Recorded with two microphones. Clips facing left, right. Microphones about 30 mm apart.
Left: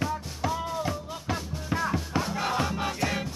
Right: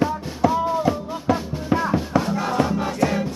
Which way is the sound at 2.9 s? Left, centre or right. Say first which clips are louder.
Right 7 dB; centre.